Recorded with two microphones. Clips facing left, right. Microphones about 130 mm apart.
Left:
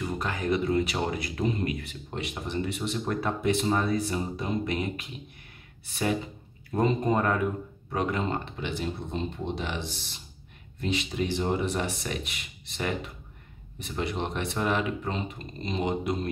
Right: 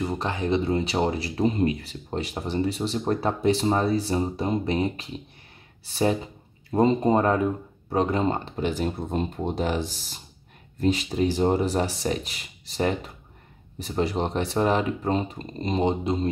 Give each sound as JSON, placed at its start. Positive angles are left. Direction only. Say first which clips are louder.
{"t": 0.0, "sound": "speech", "louder": "right 3 dB", "side_deg": -25}